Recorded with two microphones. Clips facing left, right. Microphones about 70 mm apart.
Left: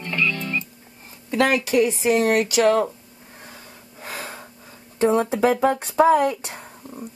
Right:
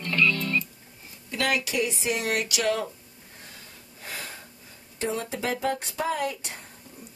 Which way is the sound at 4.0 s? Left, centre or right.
Left.